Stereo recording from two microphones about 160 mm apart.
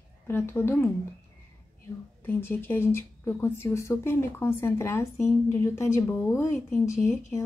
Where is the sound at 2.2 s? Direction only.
10° left (ahead or behind).